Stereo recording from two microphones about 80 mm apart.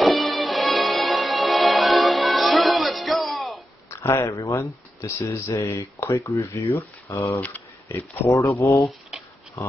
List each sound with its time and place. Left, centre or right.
0.0 s music: centre
3.9 s speech: left
7.3 s speech: left